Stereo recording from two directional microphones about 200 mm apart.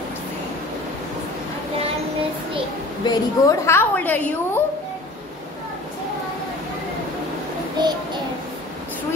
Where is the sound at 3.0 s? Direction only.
20° left (ahead or behind).